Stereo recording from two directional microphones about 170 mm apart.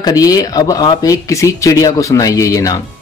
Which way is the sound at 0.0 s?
20° left (ahead or behind).